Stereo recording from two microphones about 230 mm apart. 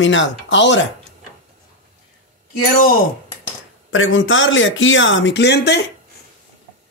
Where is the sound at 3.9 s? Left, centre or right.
Left.